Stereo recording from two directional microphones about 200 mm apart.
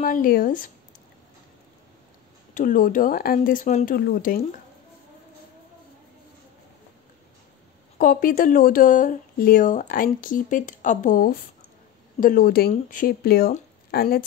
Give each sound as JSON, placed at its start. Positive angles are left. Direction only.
{"t": 0.0, "sound": "speech", "side_deg": 45}
{"t": 2.5, "sound": "speech", "side_deg": 40}
{"t": 8.0, "sound": "speech", "side_deg": 45}